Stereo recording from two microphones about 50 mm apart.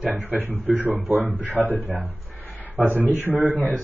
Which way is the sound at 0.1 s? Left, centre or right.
Right.